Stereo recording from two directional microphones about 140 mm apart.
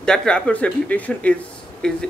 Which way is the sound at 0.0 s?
5° left (ahead or behind).